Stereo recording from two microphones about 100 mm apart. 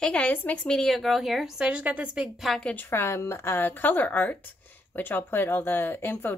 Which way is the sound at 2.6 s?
20° left (ahead or behind).